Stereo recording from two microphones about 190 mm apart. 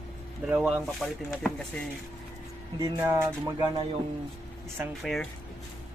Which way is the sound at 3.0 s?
15° right (ahead or behind).